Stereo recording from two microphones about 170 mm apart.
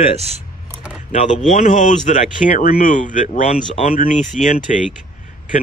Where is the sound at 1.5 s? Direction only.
50° left (ahead or behind).